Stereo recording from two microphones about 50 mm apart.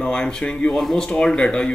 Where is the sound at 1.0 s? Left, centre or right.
Centre.